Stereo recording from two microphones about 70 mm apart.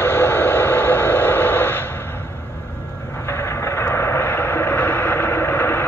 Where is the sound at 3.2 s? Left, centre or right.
Left.